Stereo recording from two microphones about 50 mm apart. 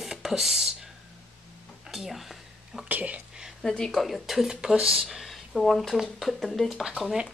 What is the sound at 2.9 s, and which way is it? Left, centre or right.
Speech, right.